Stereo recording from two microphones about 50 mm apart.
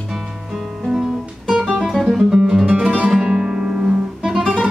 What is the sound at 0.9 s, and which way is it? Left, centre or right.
Music, centre.